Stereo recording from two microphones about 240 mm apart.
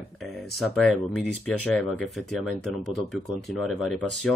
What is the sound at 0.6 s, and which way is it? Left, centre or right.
Speech, centre.